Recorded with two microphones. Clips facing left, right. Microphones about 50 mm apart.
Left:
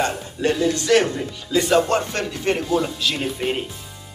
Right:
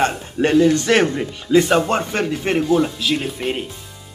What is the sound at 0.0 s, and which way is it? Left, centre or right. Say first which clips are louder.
Speech: right 3 dB; right.